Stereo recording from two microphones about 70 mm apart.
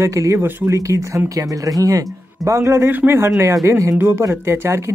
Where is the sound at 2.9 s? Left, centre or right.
Right.